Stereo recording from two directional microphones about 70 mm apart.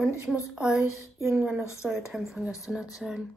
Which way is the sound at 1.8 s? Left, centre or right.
Centre.